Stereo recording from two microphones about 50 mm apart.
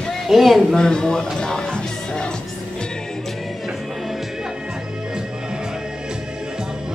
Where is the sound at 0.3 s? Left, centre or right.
Centre.